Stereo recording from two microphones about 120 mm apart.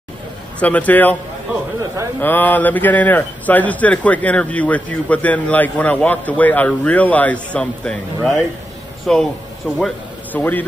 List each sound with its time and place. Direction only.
0.6 s speech: 10° left (ahead or behind)
2.1 s speech: 15° left (ahead or behind)
10.3 s speech: 15° left (ahead or behind)